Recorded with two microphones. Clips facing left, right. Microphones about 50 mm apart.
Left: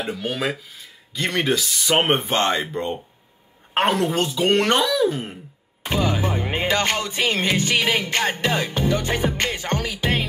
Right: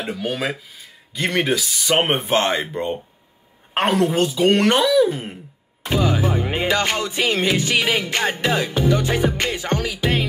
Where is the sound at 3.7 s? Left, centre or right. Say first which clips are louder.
Right 2 dB; centre.